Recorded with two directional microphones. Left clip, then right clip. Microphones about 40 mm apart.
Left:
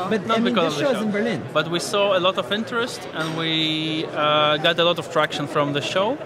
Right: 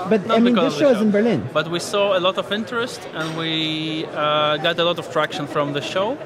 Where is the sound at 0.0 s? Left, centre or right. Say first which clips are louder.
Right 4 dB; centre.